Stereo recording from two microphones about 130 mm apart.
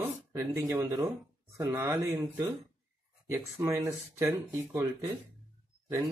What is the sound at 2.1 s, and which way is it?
Speech, 30° right (ahead or behind).